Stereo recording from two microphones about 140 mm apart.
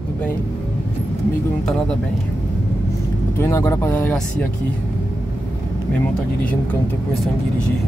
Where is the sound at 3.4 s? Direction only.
20° left (ahead or behind).